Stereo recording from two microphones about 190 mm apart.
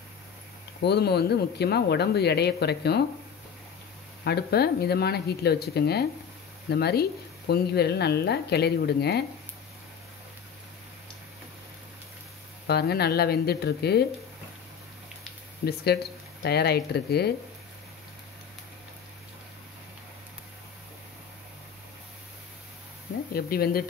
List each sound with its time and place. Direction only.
0.8 s speech: 60° left (ahead or behind)
4.2 s speech: 55° left (ahead or behind)
12.6 s speech: 60° left (ahead or behind)
15.6 s speech: 60° left (ahead or behind)
23.3 s speech: 55° left (ahead or behind)